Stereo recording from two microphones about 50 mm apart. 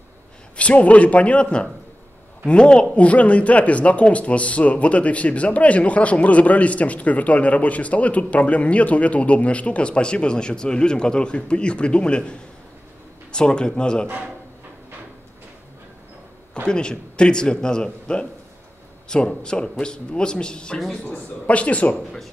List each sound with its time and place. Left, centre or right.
0.6 s speech: left
14.0 s speech: right
16.6 s speech: centre
21.0 s speech: left